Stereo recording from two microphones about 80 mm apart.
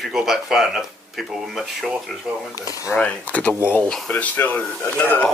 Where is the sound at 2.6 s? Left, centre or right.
Left.